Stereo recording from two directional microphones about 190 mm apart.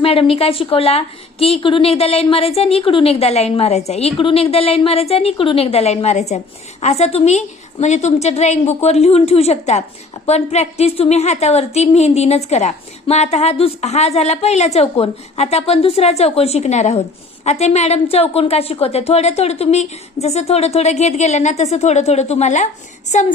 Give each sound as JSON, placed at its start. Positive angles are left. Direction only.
{"t": 0.0, "sound": "a woman's voice", "side_deg": 30}